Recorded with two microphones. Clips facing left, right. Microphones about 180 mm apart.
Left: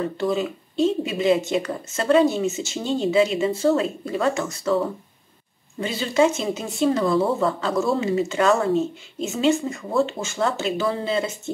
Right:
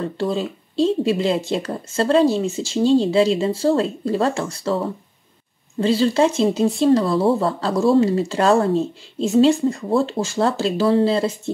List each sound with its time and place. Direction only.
0.2 s speech: 30° right (ahead or behind)
5.8 s speech: 30° right (ahead or behind)